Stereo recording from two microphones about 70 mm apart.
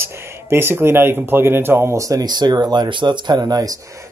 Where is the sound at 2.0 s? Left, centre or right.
Right.